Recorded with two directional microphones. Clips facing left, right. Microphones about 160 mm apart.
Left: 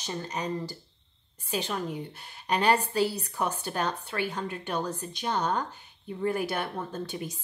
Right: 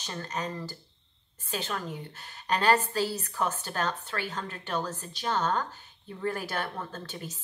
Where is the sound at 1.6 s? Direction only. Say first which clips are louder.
Left 3 dB; 15° left (ahead or behind).